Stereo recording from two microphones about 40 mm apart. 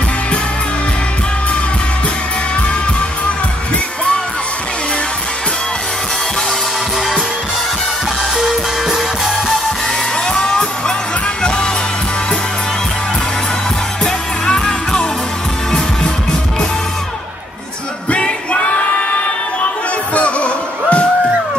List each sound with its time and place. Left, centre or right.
10.2 s music: left
14.0 s music: centre
18.1 s music: left
20.2 s music: left